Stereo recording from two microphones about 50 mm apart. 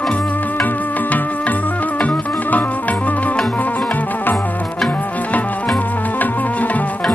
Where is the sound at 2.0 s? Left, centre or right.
Left.